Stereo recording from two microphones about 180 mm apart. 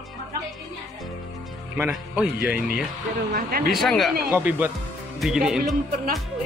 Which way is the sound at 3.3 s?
55° right (ahead or behind).